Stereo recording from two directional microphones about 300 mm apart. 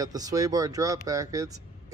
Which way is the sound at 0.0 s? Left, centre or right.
Centre.